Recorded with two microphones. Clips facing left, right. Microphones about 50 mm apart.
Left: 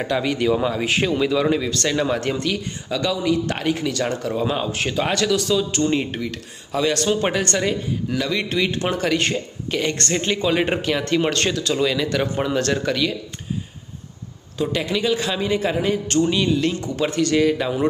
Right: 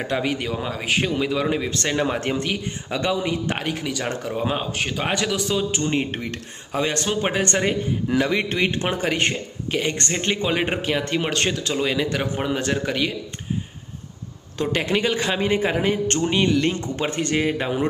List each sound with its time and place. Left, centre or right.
0.1 s speech: centre
0.6 s speech: centre; by 3.5 s right
3.6 s speech: centre
4.6 s speech: centre
5.0 s speech: centre
9.3 s speech: centre; by 10.5 s right
10.8 s speech: centre
14.8 s a man's voice: right